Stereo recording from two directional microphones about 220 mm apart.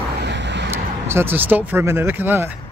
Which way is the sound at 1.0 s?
10° right (ahead or behind).